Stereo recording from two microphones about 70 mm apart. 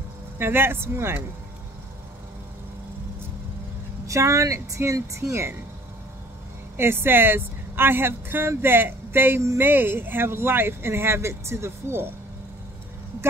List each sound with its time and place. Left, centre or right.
0.4 s speech: right
4.1 s speech: right
6.8 s speech: right